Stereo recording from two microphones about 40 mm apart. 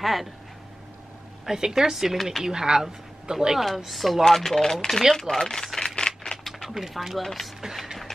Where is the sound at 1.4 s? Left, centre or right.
Centre.